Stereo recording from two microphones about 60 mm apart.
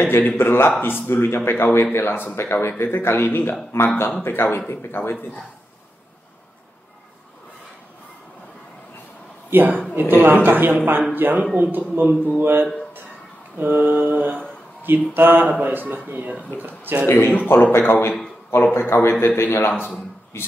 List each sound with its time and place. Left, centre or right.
0.0 s speech: left
9.5 s mantra: right
11.5 s a man's voice: right
12.4 s mantra: right
17.0 s speech: left